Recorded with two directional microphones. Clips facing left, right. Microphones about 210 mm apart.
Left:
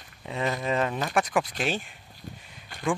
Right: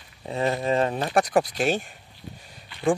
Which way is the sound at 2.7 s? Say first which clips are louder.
Right 2 dB; 45° left (ahead or behind).